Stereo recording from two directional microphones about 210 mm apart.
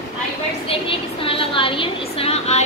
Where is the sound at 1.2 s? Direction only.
25° left (ahead or behind).